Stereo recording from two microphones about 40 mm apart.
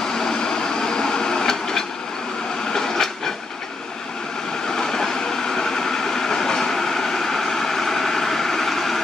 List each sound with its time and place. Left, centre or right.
0.2 s a sound: centre
2.7 s train: centre
4.6 s train: centre